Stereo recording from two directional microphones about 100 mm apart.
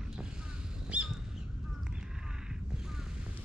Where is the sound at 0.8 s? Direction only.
10° right (ahead or behind).